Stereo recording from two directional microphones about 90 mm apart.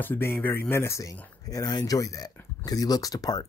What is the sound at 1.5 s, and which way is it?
Speech, 45° left (ahead or behind).